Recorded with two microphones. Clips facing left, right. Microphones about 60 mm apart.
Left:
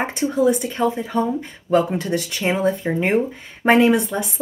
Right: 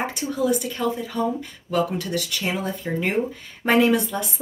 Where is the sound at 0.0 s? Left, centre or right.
Left.